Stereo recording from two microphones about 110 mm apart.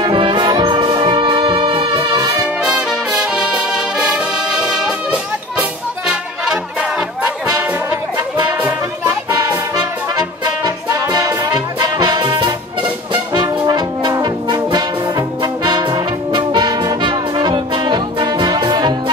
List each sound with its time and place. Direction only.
0.0 s music: 45° right (ahead or behind)
2.6 s brass instrument: 10° right (ahead or behind)
8.5 s music: 15° right (ahead or behind)
9.4 s music: 35° right (ahead or behind)
13.7 s brass instrument: 40° right (ahead or behind)